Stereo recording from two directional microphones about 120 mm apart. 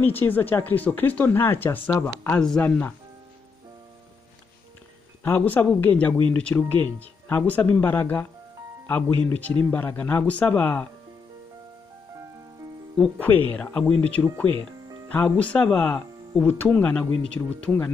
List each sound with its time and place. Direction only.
0.0 s speech: 15° left (ahead or behind)
5.2 s speech: 15° left (ahead or behind)
13.2 s speech: 15° left (ahead or behind)